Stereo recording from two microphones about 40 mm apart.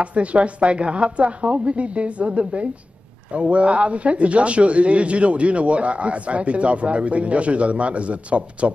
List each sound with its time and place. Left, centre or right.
0.0 s a man's voice: right